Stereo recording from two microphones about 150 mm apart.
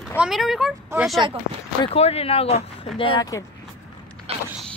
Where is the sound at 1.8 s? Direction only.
40° left (ahead or behind).